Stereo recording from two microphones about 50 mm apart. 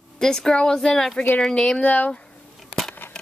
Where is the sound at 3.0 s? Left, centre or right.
Left.